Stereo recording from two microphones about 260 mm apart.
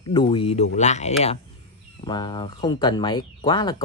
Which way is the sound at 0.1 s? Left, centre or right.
Centre.